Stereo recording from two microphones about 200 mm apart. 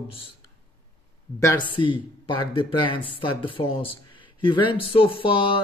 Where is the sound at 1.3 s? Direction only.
15° left (ahead or behind).